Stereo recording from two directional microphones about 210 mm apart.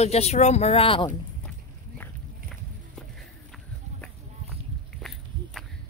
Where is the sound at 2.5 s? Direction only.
Centre (ahead or behind).